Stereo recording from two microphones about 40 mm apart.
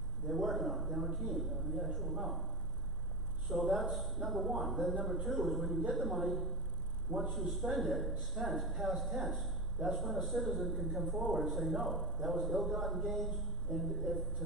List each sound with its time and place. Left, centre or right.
0.3 s a man's voice: centre
3.5 s a man's voice: centre